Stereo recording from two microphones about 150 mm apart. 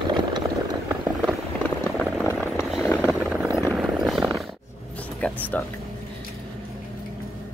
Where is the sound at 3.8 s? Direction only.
Centre (ahead or behind).